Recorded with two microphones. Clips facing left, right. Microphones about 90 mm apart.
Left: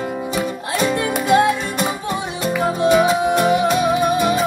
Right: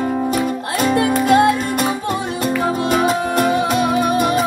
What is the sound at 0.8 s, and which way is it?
Music, 45° right (ahead or behind).